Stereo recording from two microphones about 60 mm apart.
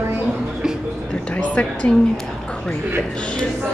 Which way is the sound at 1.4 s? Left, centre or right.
Left.